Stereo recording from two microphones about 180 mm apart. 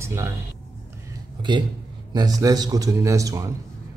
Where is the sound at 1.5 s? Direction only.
25° right (ahead or behind).